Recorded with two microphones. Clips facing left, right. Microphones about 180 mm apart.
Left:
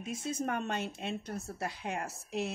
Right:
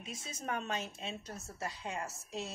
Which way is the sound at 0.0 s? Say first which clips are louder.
Left 8 dB; 55° left (ahead or behind).